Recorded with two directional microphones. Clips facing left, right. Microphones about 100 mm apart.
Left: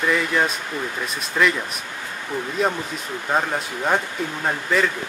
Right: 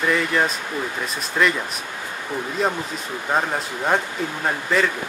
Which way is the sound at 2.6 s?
Centre (ahead or behind).